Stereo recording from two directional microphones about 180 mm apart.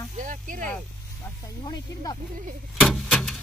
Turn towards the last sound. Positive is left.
turn(degrees=5)  # may be behind; listen again after turning